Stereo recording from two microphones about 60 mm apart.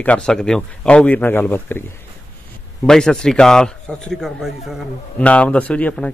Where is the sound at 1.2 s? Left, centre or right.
Left.